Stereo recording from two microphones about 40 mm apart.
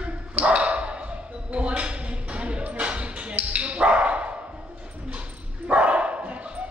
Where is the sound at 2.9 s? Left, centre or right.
Right.